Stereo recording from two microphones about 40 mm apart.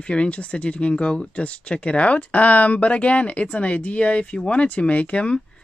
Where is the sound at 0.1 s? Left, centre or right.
Left.